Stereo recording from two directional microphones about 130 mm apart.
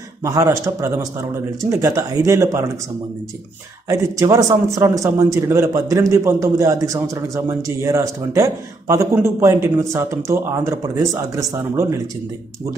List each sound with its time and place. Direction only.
0.2 s a man's voice: 25° right (ahead or behind)
3.9 s a man's voice: 25° right (ahead or behind)